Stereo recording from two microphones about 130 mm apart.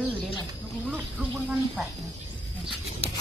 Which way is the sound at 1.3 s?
Centre (ahead or behind).